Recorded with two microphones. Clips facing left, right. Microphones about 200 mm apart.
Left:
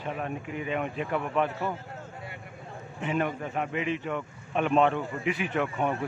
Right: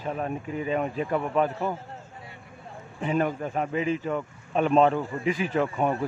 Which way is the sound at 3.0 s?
35° right (ahead or behind).